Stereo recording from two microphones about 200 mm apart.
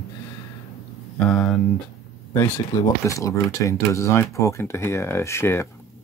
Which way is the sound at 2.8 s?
15° left (ahead or behind).